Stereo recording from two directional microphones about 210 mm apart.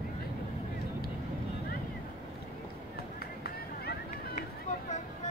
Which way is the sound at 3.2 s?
45° left (ahead or behind).